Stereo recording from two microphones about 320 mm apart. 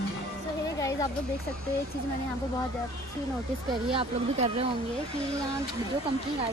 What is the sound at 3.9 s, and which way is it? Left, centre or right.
Speech, centre.